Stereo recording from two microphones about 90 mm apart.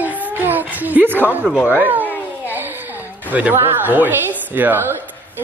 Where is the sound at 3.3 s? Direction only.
15° right (ahead or behind).